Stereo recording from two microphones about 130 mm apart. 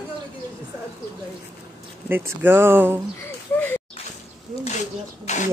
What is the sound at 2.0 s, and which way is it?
Speech, 15° right (ahead or behind).